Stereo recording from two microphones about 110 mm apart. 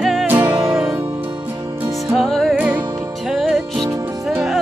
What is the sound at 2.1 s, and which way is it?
Music, centre (ahead or behind).